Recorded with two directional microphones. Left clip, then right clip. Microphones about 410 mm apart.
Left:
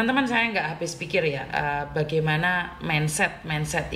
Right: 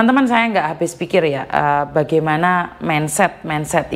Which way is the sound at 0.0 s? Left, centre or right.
Right.